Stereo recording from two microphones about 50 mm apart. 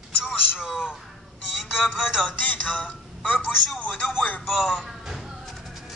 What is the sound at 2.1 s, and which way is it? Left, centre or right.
A woman's voice, left.